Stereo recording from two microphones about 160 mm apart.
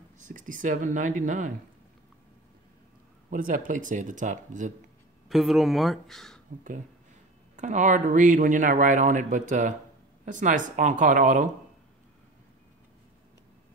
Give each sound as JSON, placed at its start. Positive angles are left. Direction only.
{"t": 0.2, "sound": "speech", "side_deg": -55}
{"t": 3.3, "sound": "speech", "side_deg": -60}
{"t": 5.3, "sound": "speech", "side_deg": 0}
{"t": 7.5, "sound": "speech", "side_deg": -50}